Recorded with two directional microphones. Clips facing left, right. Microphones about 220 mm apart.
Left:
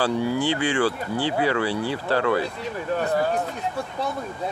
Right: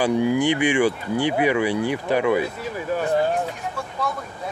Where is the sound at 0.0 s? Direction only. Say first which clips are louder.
Right 3 dB; 15° right (ahead or behind).